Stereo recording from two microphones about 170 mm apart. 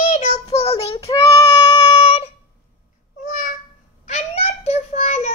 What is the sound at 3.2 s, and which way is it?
Babbling, 50° left (ahead or behind).